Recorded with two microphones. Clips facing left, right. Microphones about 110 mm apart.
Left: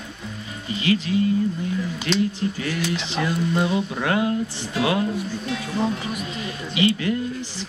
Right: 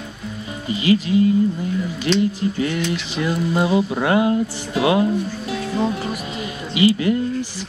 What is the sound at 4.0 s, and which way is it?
Speech, 20° right (ahead or behind).